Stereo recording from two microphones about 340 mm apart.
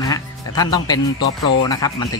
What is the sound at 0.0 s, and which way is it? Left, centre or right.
Speech, centre.